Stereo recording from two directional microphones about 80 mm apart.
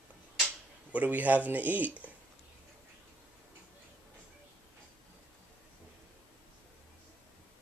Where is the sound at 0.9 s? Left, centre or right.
Right.